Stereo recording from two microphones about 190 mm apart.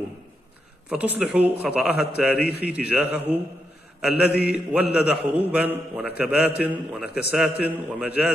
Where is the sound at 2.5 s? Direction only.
55° left (ahead or behind).